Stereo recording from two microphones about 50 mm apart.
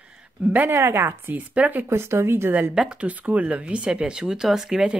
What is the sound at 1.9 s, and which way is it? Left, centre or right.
Speech, right.